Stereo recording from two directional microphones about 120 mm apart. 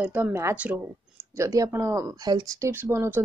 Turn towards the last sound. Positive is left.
turn(degrees=-20)  # may be behind; listen again after turning